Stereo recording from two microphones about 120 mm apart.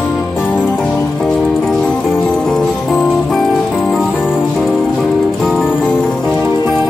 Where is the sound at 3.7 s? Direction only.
10° left (ahead or behind).